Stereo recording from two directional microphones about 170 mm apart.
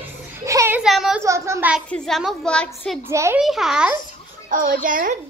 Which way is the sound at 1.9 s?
5° left (ahead or behind).